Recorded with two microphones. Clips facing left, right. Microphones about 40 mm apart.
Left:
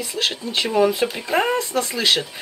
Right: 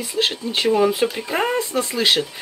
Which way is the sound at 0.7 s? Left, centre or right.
Centre.